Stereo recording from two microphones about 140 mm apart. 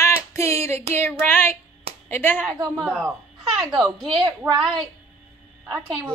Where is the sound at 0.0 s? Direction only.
20° left (ahead or behind).